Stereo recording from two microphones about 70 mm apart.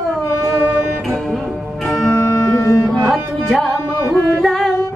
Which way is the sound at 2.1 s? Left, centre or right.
Left.